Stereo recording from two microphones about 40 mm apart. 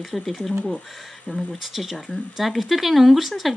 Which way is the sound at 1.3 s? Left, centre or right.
Left.